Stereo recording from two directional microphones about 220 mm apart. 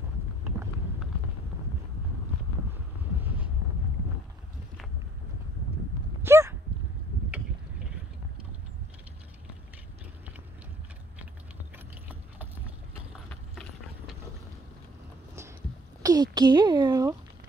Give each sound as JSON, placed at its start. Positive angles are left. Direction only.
{"t": 3.2, "sound": "wind noise", "side_deg": -5}
{"t": 6.2, "sound": "dog", "side_deg": -10}
{"t": 13.3, "sound": "clip-clop", "side_deg": 5}
{"t": 16.0, "sound": "a sound", "side_deg": -15}